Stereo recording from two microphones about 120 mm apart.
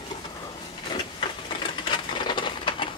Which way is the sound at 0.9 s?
45° left (ahead or behind).